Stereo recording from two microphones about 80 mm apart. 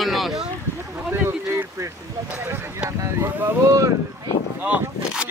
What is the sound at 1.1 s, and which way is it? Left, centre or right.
Boat, right.